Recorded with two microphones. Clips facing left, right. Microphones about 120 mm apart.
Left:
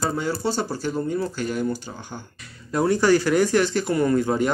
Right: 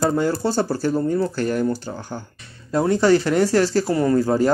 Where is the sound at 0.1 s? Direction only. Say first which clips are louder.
Right 5 dB; 45° right (ahead or behind).